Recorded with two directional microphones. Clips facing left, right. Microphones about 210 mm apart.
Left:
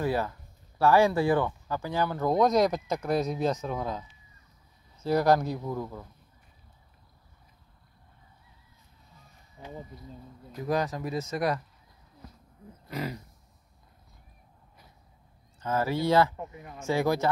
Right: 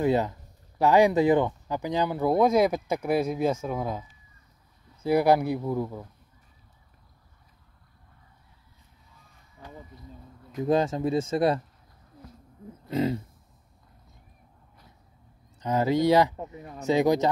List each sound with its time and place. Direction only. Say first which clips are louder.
0.0 s speech: right 5 dB; 20° right (ahead or behind)
5.0 s speech: right 2 dB; 10° right (ahead or behind)
10.5 s speech: right 5 dB; 25° right (ahead or behind)
12.8 s a sound: right 9 dB; 25° right (ahead or behind)
15.6 s speech: right 5 dB; 15° right (ahead or behind)
16.3 s speech: right 2 dB; 35° right (ahead or behind)
16.8 s speech: right 4 dB; 20° right (ahead or behind)